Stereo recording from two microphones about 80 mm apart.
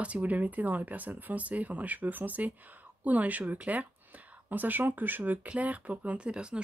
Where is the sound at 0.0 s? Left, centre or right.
Centre.